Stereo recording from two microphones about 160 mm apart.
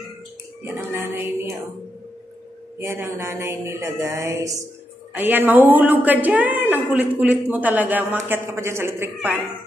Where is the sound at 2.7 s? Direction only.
15° right (ahead or behind).